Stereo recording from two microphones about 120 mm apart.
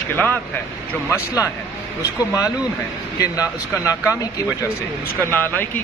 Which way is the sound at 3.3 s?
30° left (ahead or behind).